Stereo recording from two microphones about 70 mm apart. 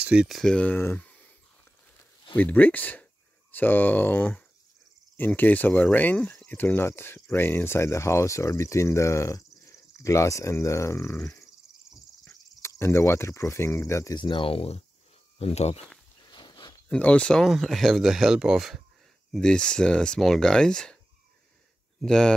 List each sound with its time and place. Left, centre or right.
0.0 s speech: centre
0.3 s speech: centre
2.3 s speech: left
6.3 s cricket: centre
6.6 s speech: left
12.6 s speech: left
16.2 s a sound: left
16.9 s speech: centre
17.4 s speech: centre
19.3 s speech: centre
22.0 s speech: centre